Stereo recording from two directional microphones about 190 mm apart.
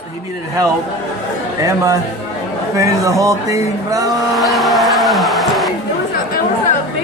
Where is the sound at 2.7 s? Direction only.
15° right (ahead or behind).